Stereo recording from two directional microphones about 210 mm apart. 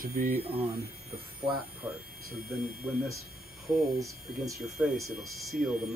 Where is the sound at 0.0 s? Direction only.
35° right (ahead or behind).